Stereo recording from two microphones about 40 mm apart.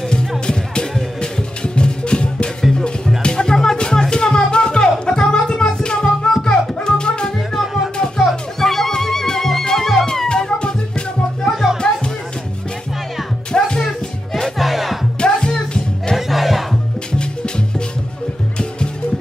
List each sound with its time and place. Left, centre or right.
1.2 s music: left
7.5 s music: centre
8.2 s music: centre
10.2 s music: left
11.4 s music: centre
13.5 s music: centre
14.6 s music: centre
15.1 s music: left
16.2 s music: centre